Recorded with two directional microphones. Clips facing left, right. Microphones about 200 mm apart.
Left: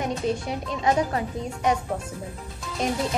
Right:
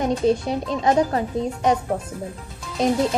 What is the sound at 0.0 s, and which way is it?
Speech, 30° right (ahead or behind).